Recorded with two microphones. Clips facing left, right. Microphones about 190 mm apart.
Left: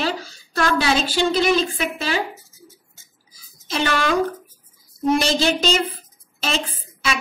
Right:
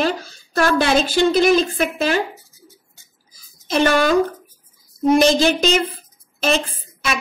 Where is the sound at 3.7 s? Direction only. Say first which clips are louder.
Right 5 dB; 45° right (ahead or behind).